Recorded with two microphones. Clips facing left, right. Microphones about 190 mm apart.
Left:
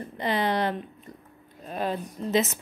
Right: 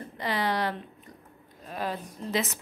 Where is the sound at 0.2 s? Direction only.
25° left (ahead or behind).